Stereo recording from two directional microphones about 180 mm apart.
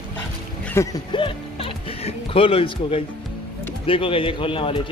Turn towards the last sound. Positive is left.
turn(degrees=30)  # may be behind; listen again after turning